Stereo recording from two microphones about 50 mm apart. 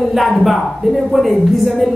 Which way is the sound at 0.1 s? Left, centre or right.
Centre.